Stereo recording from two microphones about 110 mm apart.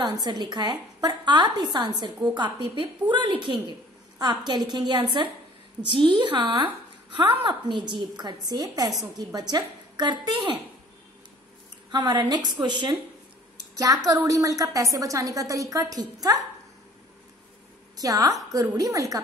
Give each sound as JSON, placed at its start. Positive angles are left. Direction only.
{"t": 0.0, "sound": "a woman's voice", "side_deg": -40}
{"t": 11.9, "sound": "a woman's voice", "side_deg": -40}
{"t": 14.0, "sound": "a woman's voice", "side_deg": -30}
{"t": 17.9, "sound": "a woman's voice", "side_deg": -35}